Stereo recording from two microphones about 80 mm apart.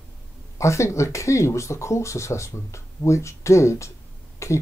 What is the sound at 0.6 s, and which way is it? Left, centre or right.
Speech, left.